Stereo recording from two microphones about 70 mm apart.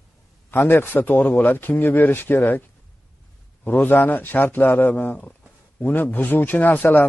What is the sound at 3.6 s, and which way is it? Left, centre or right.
A man's voice, left.